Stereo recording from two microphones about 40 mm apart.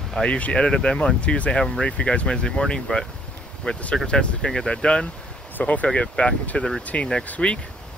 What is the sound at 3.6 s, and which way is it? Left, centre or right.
Speech, left.